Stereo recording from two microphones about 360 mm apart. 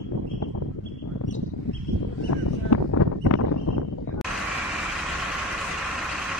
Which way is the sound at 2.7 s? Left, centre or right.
Left.